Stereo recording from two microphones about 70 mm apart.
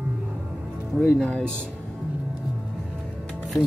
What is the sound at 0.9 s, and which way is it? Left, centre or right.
Speech, centre.